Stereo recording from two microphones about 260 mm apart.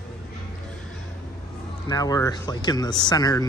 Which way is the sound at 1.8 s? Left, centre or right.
Centre.